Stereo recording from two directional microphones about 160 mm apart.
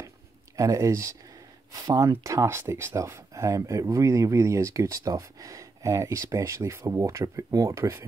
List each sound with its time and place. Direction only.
0.6 s speech: 20° right (ahead or behind)